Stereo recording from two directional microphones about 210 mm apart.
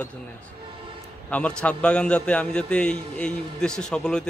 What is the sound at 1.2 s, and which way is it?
A man's voice, 5° left (ahead or behind).